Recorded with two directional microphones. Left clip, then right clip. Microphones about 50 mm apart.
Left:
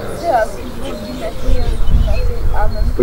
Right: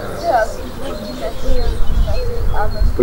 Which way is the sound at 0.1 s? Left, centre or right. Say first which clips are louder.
Left 1 dB; centre.